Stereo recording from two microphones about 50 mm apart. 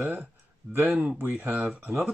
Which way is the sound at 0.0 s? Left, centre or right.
Right.